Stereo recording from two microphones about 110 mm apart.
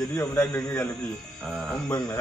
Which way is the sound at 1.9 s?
40° left (ahead or behind).